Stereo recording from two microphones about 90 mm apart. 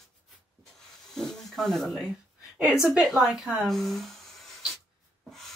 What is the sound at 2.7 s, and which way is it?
Speech, 35° left (ahead or behind).